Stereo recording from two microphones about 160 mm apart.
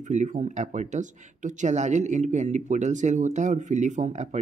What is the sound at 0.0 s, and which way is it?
Speech, 50° right (ahead or behind).